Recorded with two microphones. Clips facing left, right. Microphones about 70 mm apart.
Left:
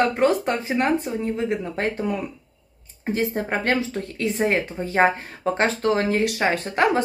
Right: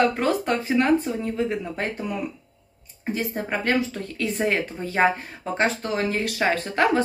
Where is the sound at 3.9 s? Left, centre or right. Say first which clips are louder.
Left 2 dB; left.